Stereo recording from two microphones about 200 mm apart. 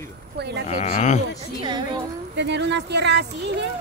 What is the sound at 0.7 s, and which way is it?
Speech, 35° left (ahead or behind).